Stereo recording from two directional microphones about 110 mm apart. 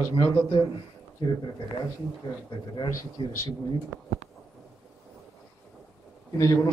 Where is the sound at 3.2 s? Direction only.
45° left (ahead or behind).